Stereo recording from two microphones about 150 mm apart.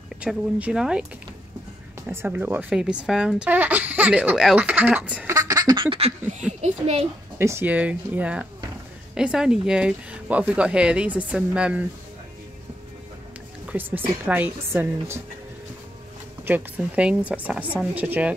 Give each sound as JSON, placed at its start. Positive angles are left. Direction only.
{"t": 0.2, "sound": "speech", "side_deg": -5}
{"t": 2.0, "sound": "speech", "side_deg": -10}
{"t": 5.3, "sound": "duck", "side_deg": -25}
{"t": 6.6, "sound": "a child's voice", "side_deg": -45}
{"t": 7.3, "sound": "speech", "side_deg": -15}
{"t": 13.7, "sound": "speech", "side_deg": -15}
{"t": 16.4, "sound": "speech", "side_deg": -10}